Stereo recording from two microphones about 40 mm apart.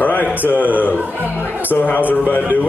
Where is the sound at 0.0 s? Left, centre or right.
Left.